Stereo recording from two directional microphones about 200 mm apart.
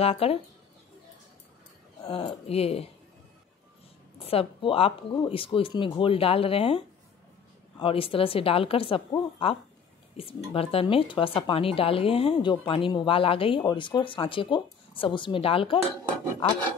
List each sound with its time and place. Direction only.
0.0 s speech: 30° left (ahead or behind)
2.0 s speech: 30° left (ahead or behind)
4.3 s speech: 25° left (ahead or behind)
7.8 s speech: 25° left (ahead or behind)